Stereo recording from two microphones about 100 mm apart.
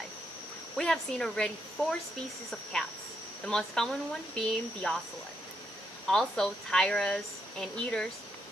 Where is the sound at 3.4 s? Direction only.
5° left (ahead or behind).